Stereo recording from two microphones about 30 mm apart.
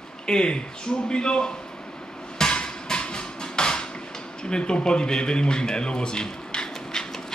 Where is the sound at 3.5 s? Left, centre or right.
Left.